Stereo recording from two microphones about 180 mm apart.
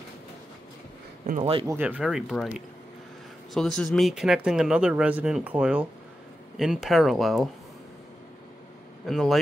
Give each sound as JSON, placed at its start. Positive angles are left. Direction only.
{"t": 1.4, "sound": "speech", "side_deg": -30}
{"t": 1.7, "sound": "speech", "side_deg": -10}
{"t": 3.5, "sound": "speech", "side_deg": 0}
{"t": 9.0, "sound": "speech", "side_deg": 0}